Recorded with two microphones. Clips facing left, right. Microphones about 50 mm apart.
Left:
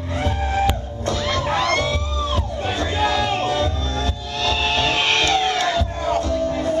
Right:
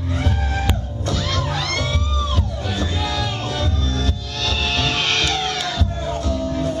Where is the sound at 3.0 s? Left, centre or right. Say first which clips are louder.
Left 5 dB; left.